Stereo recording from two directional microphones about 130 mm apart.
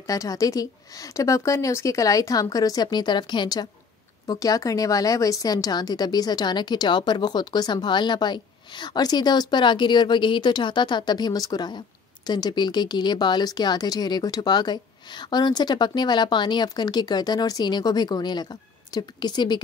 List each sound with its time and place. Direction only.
0.0 s a woman's voice: 25° left (ahead or behind)